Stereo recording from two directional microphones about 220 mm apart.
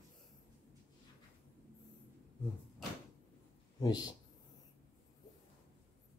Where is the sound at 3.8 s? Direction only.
20° left (ahead or behind).